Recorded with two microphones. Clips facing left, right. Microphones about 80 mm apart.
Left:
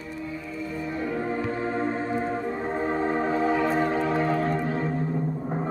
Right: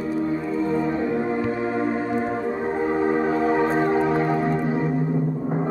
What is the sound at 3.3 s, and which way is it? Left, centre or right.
Music, right.